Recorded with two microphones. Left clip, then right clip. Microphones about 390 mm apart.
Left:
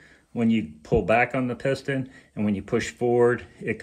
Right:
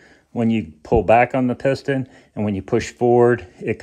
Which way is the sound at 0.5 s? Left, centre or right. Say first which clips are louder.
Right 4 dB; centre.